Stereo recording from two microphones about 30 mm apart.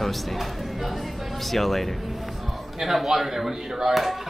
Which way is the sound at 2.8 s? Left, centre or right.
Centre.